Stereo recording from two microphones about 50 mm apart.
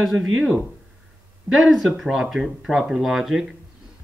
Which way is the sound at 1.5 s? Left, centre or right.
Centre.